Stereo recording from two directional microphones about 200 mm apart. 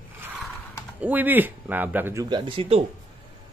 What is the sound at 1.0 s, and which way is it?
Speech, 10° right (ahead or behind).